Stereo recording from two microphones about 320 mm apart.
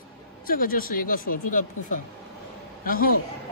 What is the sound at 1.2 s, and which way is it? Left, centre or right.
Speech, left.